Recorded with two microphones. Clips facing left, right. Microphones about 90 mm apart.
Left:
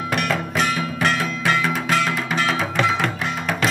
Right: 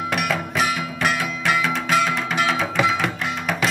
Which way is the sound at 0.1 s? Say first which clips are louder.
Left 2 dB; 5° right (ahead or behind).